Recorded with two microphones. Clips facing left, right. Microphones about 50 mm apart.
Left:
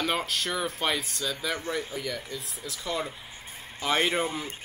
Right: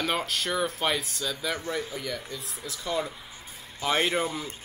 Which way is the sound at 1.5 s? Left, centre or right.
Left.